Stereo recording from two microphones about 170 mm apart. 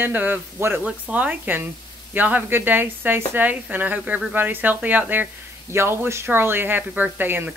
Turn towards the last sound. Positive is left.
turn(degrees=-10)  # may be behind; listen again after turning